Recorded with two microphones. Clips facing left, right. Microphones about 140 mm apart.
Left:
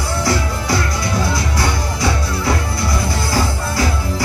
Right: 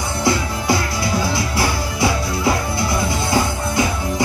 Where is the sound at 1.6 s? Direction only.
25° right (ahead or behind).